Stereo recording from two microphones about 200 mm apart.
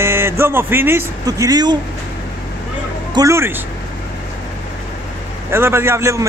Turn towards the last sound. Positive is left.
turn(degrees=-15)  # may be behind; listen again after turning